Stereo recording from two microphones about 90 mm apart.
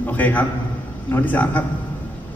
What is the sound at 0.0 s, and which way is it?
A man's voice, 20° left (ahead or behind).